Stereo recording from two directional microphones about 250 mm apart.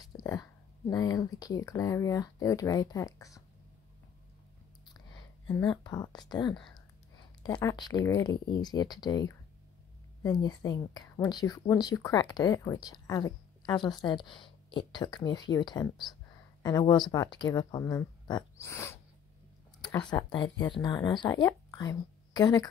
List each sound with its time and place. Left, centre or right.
0.0 s speech: centre
5.7 s speech: centre